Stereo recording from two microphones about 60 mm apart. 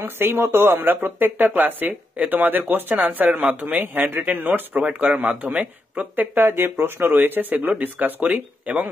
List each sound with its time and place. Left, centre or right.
0.0 s speech: right
5.2 s speech: right
6.1 s speech: right